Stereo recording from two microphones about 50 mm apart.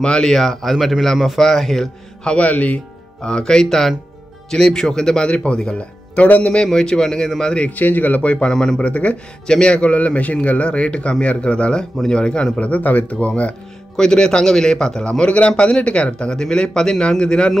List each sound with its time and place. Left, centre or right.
0.0 s speech: centre
2.2 s a man's voice: left
3.2 s a man's voice: centre
6.1 s a man's voice: left
6.6 s a man's voice: centre
7.5 s a man's voice: left
8.5 s a man's voice: centre
8.8 s a man's voice: left
13.9 s a man's voice: centre